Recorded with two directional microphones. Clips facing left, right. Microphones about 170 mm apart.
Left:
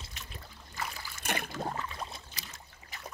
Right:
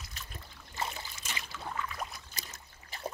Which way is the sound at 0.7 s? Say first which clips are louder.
Right 2 dB; 25° right (ahead or behind).